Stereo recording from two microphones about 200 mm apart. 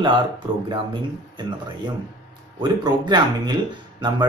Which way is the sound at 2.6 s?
20° right (ahead or behind).